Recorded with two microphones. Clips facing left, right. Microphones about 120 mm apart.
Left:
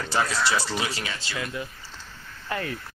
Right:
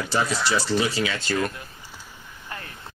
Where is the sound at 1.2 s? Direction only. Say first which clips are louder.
Right 7 dB; 50° right (ahead or behind).